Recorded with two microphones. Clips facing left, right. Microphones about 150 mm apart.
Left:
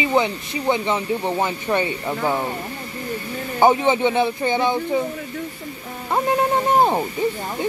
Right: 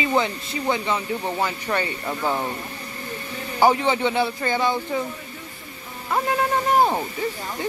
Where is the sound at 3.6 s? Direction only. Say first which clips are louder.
Left 3 dB; 20° left (ahead or behind).